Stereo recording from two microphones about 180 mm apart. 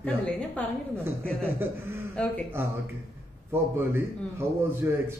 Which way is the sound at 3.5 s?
15° right (ahead or behind).